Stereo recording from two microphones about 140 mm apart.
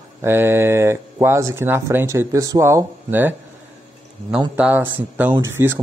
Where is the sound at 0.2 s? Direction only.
15° right (ahead or behind).